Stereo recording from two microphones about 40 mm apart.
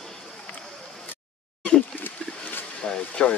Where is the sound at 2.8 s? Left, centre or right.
Left.